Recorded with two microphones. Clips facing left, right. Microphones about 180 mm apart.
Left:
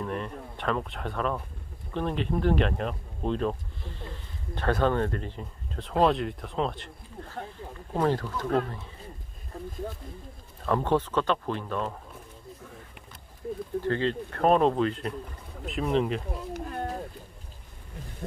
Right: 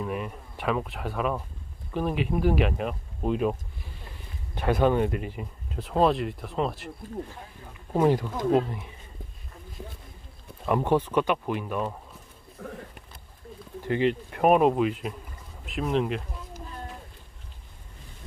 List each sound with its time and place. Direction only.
0.0 s speech: 5° right (ahead or behind)
4.6 s speech: 10° right (ahead or behind)
7.9 s speech: 10° right (ahead or behind)
10.6 s speech: 15° right (ahead or behind)
12.6 s a sound: 60° right (ahead or behind)
13.8 s speech: 15° right (ahead or behind)
16.3 s a sound: 60° left (ahead or behind)